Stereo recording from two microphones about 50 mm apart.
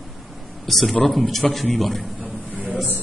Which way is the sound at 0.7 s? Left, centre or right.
Centre.